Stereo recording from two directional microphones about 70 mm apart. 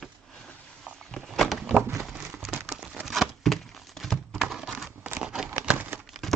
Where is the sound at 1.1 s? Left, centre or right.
Centre.